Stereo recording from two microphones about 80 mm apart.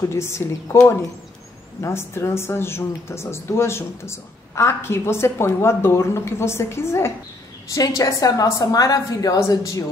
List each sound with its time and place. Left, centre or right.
0.1 s a woman's voice: left
7.7 s a woman's voice: left